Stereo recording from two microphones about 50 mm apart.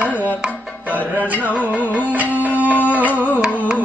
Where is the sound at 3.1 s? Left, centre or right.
Left.